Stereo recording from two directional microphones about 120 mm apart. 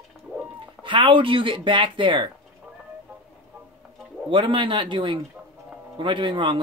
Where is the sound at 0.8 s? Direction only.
45° right (ahead or behind).